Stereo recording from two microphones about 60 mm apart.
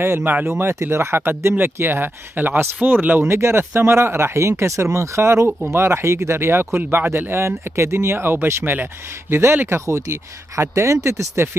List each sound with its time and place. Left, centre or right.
0.0 s speech: right
9.7 s speech: right